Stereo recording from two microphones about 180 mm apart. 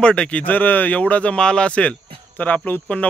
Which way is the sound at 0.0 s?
5° left (ahead or behind).